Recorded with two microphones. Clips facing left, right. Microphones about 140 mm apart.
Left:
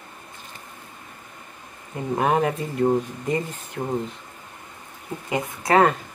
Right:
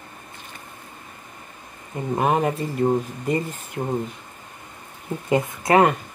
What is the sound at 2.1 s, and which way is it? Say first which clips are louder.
Speech: even; 5° right (ahead or behind).